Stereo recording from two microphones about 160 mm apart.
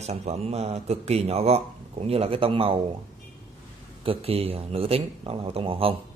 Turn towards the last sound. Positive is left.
turn(degrees=-35)  # may be behind; listen again after turning